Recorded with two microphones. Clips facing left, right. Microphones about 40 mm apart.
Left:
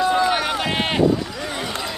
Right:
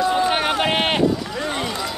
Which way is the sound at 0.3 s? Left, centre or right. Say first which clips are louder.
Right 2 dB; right.